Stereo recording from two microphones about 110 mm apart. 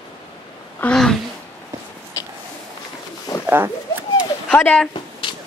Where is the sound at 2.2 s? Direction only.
30° left (ahead or behind).